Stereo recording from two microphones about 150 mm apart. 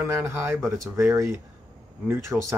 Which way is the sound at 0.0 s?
15° right (ahead or behind).